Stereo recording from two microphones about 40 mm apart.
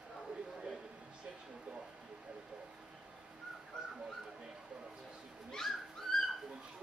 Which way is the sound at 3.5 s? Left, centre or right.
Centre.